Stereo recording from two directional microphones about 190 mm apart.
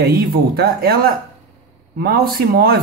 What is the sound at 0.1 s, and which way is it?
Speech, 55° right (ahead or behind).